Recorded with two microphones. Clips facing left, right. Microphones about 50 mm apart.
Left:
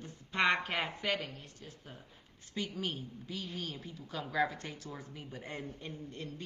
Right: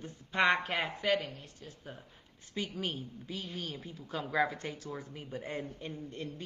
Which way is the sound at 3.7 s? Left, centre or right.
Right.